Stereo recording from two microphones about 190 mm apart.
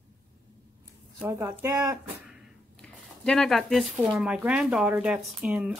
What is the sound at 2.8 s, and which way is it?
Speech, 5° left (ahead or behind).